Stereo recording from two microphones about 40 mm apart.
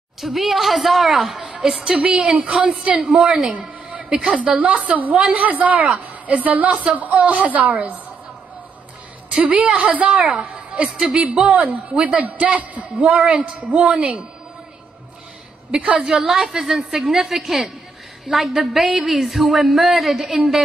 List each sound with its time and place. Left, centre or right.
0.2 s a man's voice: centre
2.0 s a woman's voice: right
4.3 s a woman's voice: right
9.3 s a woman's voice: right
11.4 s a woman's voice: right
15.7 s a woman's voice: right
16.1 s a woman's voice: centre